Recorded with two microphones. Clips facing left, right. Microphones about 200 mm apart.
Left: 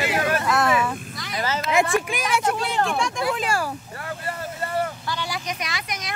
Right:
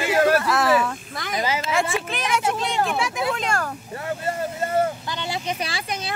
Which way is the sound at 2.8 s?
5° right (ahead or behind).